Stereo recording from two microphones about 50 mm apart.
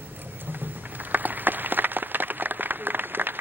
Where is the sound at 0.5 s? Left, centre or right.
Right.